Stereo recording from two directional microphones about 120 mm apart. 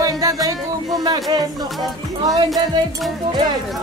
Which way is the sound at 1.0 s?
35° right (ahead or behind).